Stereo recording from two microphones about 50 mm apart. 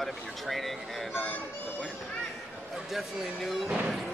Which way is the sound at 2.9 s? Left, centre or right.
Centre.